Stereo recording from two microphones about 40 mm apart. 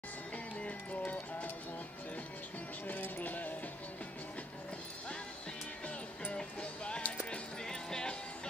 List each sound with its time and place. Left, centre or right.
0.6 s music: left
2.9 s music: left
6.3 s music: left
7.6 s music: centre